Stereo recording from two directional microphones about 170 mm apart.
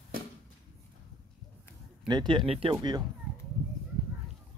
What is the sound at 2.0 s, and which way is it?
Speech, 25° right (ahead or behind).